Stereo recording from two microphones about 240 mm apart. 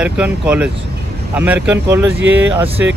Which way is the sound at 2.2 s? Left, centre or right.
Right.